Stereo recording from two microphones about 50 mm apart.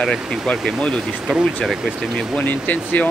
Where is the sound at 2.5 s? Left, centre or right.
Left.